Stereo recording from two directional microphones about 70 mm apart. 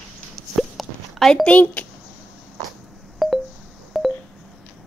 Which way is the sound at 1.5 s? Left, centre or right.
Left.